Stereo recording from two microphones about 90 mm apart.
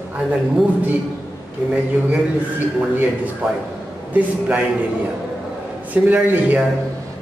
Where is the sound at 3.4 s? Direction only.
15° right (ahead or behind).